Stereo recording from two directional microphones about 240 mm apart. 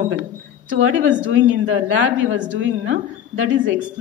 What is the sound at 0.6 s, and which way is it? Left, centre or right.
A woman's voice, right.